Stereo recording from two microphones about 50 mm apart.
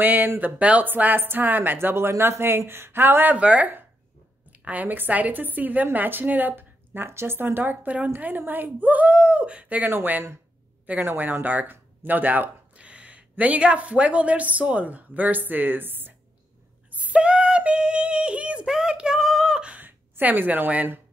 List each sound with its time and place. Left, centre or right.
0.0 s speech: right
0.4 s a woman's voice: right
3.3 s a woman's voice: right
9.8 s speech: right
12.7 s speech: right
16.9 s a sound: right
18.7 s speech: centre
19.8 s speech: right